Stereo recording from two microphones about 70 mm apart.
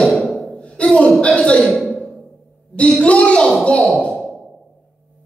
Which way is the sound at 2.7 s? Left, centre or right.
Centre.